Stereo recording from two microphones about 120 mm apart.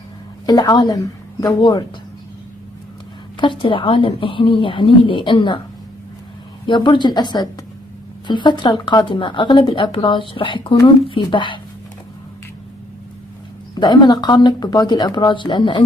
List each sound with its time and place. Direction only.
0.5 s a woman's voice: 35° left (ahead or behind)
3.3 s speech: 45° left (ahead or behind)
6.6 s speech: 40° left (ahead or behind)
13.7 s speech: 35° left (ahead or behind)